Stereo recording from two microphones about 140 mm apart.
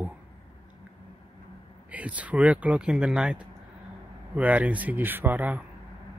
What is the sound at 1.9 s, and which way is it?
Speech, 10° right (ahead or behind).